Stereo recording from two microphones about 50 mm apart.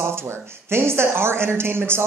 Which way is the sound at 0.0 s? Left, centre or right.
Right.